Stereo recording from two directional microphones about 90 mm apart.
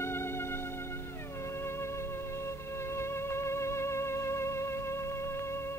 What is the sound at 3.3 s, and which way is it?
Music, 30° left (ahead or behind).